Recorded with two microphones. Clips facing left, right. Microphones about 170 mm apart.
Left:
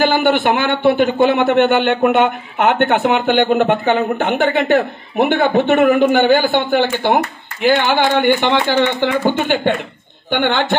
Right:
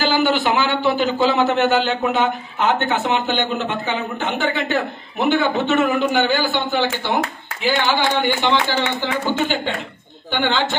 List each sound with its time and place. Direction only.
0.0 s speech: 55° left (ahead or behind)
10.3 s speech: 55° left (ahead or behind)